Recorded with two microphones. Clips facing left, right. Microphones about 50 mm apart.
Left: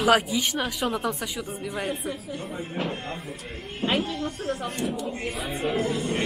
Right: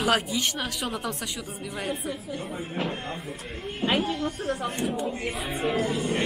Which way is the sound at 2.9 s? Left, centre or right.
Centre.